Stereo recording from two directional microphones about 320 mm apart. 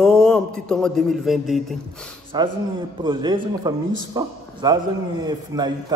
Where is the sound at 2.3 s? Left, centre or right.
Centre.